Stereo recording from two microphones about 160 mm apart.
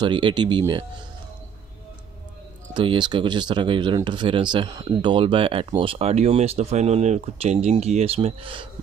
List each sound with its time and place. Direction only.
0.0 s speech: 30° right (ahead or behind)
2.7 s speech: 30° right (ahead or behind)